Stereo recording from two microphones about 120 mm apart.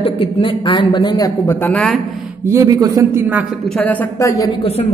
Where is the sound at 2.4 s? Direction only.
25° right (ahead or behind).